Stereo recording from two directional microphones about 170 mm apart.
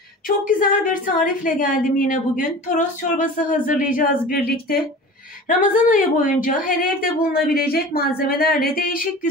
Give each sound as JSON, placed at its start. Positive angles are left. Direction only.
{"t": 0.5, "sound": "a woman's voice", "side_deg": 50}
{"t": 5.5, "sound": "a woman's voice", "side_deg": 50}